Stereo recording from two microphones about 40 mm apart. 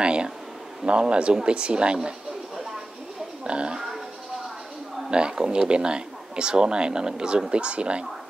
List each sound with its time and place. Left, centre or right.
0.0 s speech: right
3.4 s a sound: right
5.1 s speech: right